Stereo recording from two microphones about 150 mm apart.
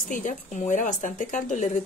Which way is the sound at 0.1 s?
60° left (ahead or behind).